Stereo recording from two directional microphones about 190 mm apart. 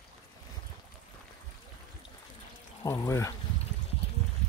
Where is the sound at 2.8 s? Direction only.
15° left (ahead or behind).